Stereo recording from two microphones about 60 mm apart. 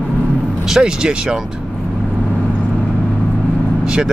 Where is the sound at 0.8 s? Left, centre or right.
Centre.